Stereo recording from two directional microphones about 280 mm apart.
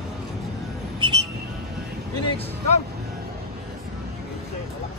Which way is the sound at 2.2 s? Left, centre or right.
Centre.